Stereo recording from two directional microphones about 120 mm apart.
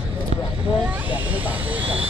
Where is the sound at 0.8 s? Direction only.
20° right (ahead or behind).